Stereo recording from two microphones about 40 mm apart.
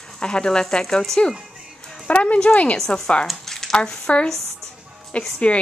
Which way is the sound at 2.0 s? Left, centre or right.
Left.